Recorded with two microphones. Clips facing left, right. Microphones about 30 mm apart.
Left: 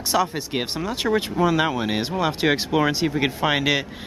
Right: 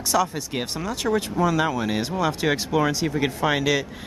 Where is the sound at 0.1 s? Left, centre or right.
Left.